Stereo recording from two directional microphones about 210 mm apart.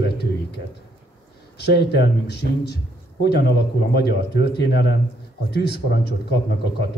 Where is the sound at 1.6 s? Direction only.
50° left (ahead or behind).